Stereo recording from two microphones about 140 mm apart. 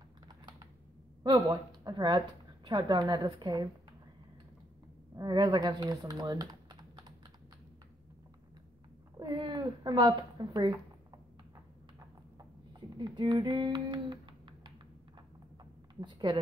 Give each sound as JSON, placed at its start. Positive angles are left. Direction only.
{"t": 1.2, "sound": "a woman's voice", "side_deg": -35}
{"t": 5.1, "sound": "speech", "side_deg": -30}
{"t": 9.2, "sound": "a woman's voice", "side_deg": -30}
{"t": 12.9, "sound": "a woman's voice", "side_deg": -30}
{"t": 16.0, "sound": "a woman's voice", "side_deg": -35}